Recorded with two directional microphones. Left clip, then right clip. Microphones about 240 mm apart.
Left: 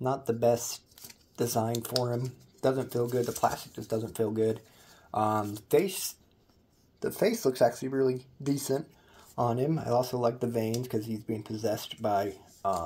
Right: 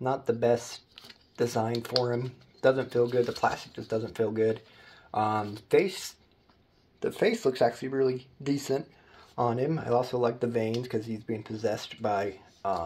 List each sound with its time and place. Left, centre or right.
0.0 s speech: left
1.6 s speech: left
2.0 s speech: left
3.0 s speech: left
7.0 s speech: left
7.2 s speech: left
10.4 s speech: left
10.7 s speech: left